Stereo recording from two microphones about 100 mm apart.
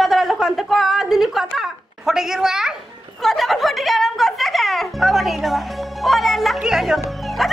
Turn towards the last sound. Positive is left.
turn(degrees=0)  # may be behind; listen again after turning